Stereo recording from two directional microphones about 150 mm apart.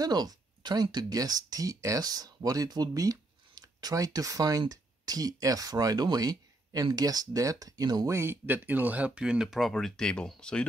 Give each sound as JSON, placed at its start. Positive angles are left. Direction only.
{"t": 0.0, "sound": "speech", "side_deg": -25}